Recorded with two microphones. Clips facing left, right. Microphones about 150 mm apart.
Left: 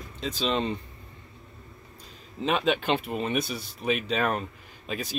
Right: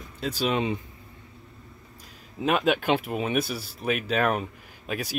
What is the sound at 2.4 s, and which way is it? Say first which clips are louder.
Speech: right 2 dB; 5° right (ahead or behind).